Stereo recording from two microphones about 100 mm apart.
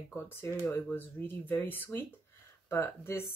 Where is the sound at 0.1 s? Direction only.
25° left (ahead or behind).